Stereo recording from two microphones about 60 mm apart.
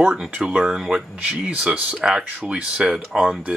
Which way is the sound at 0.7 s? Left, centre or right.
Centre.